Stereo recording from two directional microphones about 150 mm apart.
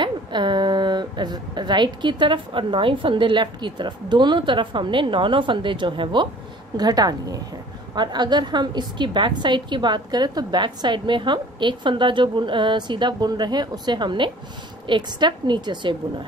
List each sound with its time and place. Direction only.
0.0 s a woman's voice: 30° right (ahead or behind)